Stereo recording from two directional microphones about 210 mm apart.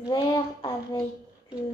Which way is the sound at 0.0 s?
20° left (ahead or behind).